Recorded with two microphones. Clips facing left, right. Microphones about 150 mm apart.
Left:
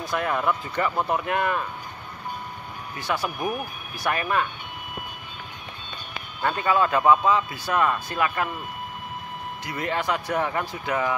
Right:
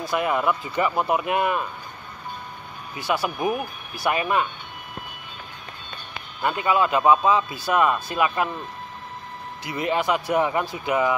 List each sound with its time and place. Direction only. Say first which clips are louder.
0.0 s speech: right 2 dB; 10° right (ahead or behind)
3.0 s speech: right 3 dB; 5° right (ahead or behind)
3.3 s speech: right 3 dB; 25° right (ahead or behind)
6.4 s speech: right 1 dB; 15° right (ahead or behind)
9.7 s speech: right 4 dB; 15° right (ahead or behind)